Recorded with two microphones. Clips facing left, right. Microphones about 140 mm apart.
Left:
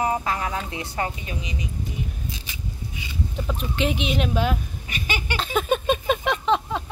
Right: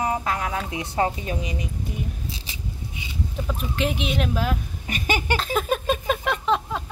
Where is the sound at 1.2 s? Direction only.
45° right (ahead or behind).